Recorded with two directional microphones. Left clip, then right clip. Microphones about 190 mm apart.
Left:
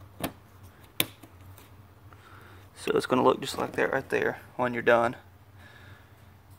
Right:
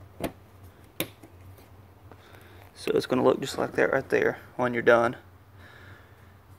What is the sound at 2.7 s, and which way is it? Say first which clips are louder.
Speech: even; 5° left (ahead or behind).